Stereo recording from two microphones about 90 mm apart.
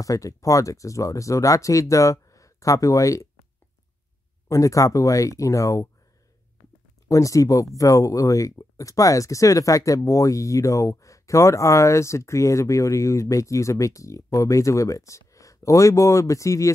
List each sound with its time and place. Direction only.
0.0 s speech: 40° left (ahead or behind)
4.5 s speech: 35° left (ahead or behind)
7.1 s speech: 35° left (ahead or behind)